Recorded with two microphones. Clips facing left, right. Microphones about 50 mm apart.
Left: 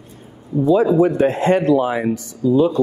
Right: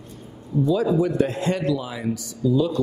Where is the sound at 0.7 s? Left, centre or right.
Left.